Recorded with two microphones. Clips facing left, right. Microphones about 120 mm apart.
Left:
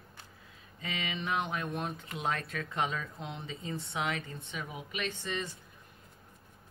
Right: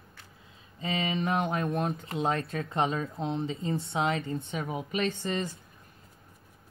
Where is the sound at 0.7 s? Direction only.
30° right (ahead or behind).